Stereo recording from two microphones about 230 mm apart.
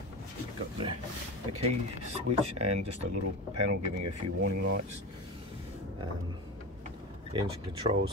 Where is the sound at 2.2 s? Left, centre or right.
Right.